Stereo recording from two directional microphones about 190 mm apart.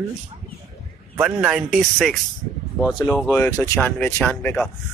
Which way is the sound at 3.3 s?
10° left (ahead or behind).